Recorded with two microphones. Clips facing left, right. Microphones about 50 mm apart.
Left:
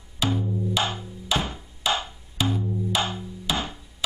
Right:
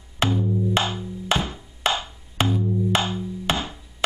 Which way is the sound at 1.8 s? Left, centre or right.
Right.